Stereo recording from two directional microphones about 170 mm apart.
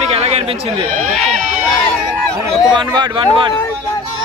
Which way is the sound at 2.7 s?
25° right (ahead or behind).